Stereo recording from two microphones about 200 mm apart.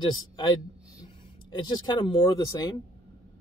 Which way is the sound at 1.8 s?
20° left (ahead or behind).